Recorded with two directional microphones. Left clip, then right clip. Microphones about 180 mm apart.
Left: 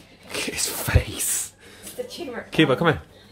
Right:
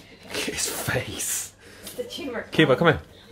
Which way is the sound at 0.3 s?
10° left (ahead or behind).